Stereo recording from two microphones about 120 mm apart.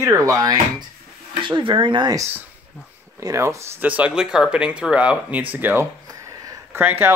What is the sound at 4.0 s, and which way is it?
Speech, 5° right (ahead or behind).